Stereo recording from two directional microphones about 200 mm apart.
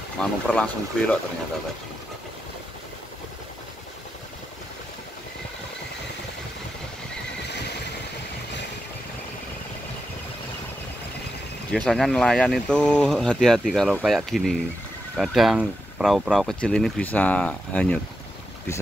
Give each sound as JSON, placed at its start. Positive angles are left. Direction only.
{"t": 0.2, "sound": "speech", "side_deg": 5}
{"t": 7.4, "sound": "vehicle", "side_deg": 55}
{"t": 11.7, "sound": "speech", "side_deg": 0}